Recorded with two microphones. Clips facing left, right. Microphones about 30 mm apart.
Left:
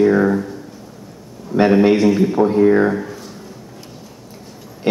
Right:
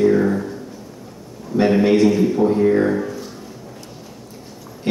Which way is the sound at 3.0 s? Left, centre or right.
Centre.